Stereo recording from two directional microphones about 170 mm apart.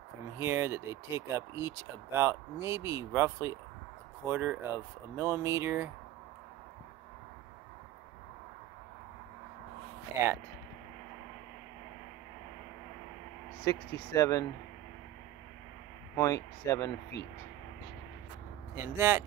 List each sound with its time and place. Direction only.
0.4 s speech: 15° right (ahead or behind)
10.1 s speech: 15° right (ahead or behind)
13.7 s speech: 20° left (ahead or behind)
16.2 s speech: 20° left (ahead or behind)
18.8 s speech: 15° right (ahead or behind)